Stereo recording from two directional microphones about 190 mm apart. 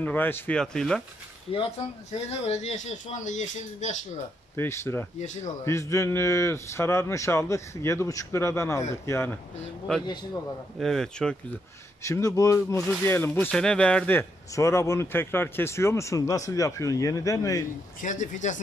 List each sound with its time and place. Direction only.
0.0 s speech: 10° left (ahead or behind)
1.5 s speech: 30° left (ahead or behind)
4.6 s speech: 15° left (ahead or behind)
5.2 s speech: 40° left (ahead or behind)
5.7 s speech: 15° left (ahead or behind)
12.0 s speech: 15° left (ahead or behind)
18.0 s speech: 40° left (ahead or behind)